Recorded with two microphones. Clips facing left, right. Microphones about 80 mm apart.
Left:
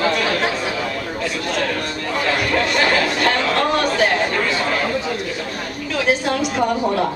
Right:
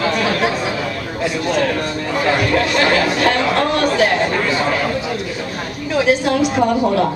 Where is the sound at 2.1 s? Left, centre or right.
Centre.